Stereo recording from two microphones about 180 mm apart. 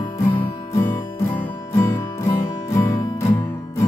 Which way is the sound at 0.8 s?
10° left (ahead or behind).